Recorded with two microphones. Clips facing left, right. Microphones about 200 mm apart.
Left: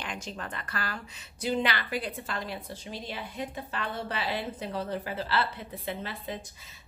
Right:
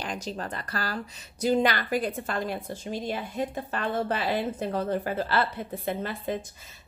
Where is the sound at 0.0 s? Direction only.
35° right (ahead or behind).